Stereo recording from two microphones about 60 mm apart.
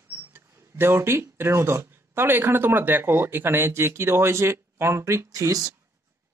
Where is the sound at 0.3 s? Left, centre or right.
Right.